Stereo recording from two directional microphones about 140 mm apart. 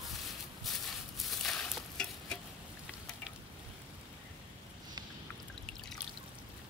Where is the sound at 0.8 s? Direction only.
Centre (ahead or behind).